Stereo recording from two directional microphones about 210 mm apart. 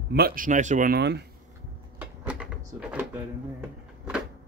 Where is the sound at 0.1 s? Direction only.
45° right (ahead or behind).